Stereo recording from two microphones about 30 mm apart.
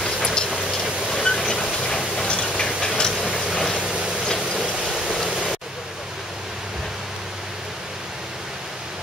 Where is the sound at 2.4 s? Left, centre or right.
Centre.